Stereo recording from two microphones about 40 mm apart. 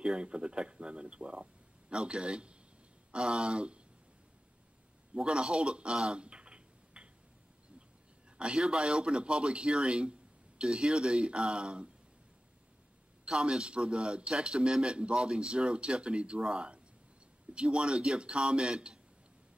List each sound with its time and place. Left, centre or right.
0.0 s a man's voice: right
5.1 s a man's voice: right
6.0 s a sound: right
8.4 s a man's voice: right
13.3 s a man's voice: centre